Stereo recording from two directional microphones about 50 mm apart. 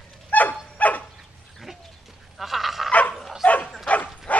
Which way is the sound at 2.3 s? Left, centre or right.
Centre.